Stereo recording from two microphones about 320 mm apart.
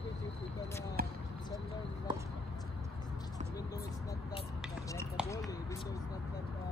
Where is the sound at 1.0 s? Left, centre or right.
Right.